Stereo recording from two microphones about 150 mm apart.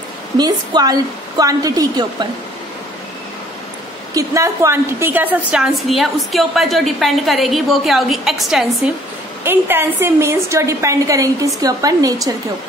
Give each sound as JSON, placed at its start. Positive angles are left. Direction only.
{"t": 0.4, "sound": "a woman's voice", "side_deg": -25}
{"t": 4.1, "sound": "a woman's voice", "side_deg": -20}
{"t": 9.4, "sound": "a woman's voice", "side_deg": -15}